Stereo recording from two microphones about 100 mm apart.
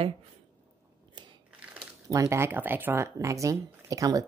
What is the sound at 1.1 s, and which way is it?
Scissors, 50° right (ahead or behind).